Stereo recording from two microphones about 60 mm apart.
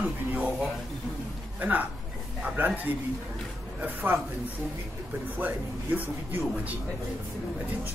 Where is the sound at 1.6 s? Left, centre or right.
Right.